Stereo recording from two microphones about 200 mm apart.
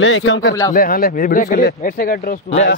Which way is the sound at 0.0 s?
70° left (ahead or behind).